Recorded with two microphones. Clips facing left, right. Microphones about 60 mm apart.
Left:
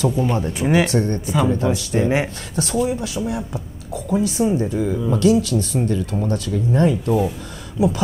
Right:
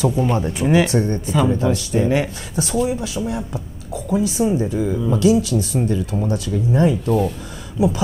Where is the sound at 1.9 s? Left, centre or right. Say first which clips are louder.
Even; left.